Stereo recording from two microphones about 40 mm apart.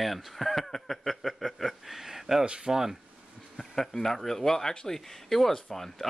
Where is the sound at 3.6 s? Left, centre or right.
Centre.